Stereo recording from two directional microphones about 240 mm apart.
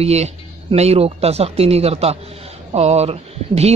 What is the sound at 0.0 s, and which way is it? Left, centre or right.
Speech, right.